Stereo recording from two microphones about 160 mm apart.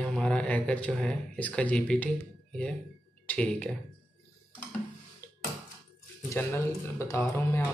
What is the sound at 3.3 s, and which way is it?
Speech, 10° left (ahead or behind).